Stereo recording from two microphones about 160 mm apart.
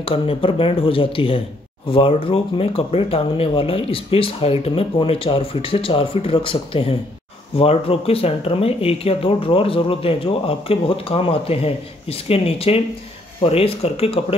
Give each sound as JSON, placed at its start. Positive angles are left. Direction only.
{"t": 0.0, "sound": "speech", "side_deg": 35}